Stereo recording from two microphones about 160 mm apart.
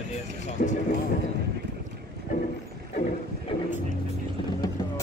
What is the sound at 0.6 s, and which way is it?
Speech, 70° left (ahead or behind).